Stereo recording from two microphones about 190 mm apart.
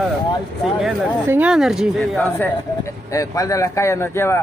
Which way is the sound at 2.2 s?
15° left (ahead or behind).